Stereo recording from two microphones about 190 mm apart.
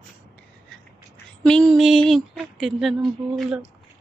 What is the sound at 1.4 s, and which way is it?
Speech, 5° left (ahead or behind).